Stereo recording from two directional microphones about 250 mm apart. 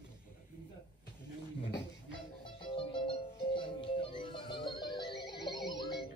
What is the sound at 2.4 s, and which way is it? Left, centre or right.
Music, centre.